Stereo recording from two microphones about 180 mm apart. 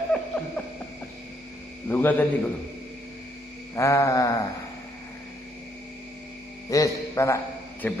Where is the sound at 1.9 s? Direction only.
10° left (ahead or behind).